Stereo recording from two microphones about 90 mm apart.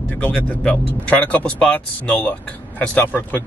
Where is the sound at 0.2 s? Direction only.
20° left (ahead or behind).